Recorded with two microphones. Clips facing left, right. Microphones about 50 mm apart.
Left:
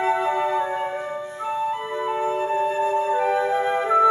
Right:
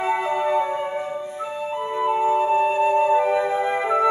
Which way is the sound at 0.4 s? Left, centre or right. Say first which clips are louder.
Right 1 dB; centre.